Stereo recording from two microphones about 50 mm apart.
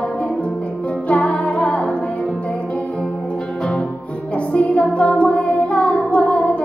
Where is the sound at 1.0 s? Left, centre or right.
Left.